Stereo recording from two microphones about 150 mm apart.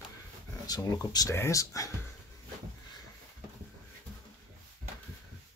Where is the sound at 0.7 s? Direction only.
20° left (ahead or behind).